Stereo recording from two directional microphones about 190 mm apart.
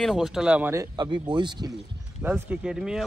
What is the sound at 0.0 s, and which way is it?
A man's voice, centre (ahead or behind).